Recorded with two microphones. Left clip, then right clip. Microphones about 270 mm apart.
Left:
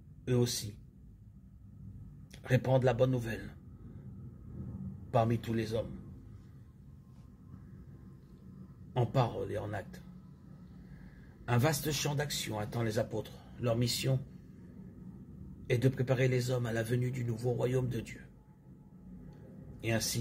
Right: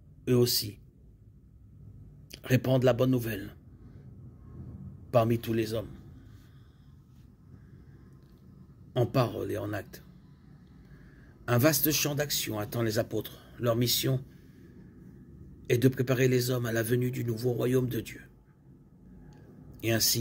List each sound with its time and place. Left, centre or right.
0.2 s speech: right
2.3 s speech: right
5.1 s speech: right
8.9 s speech: right
11.4 s speech: right
15.6 s speech: right
19.8 s speech: right